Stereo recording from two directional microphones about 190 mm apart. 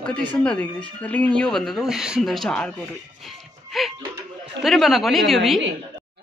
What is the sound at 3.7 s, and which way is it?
Speech, centre (ahead or behind).